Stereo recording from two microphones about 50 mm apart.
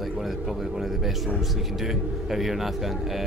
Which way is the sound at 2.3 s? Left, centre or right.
Centre.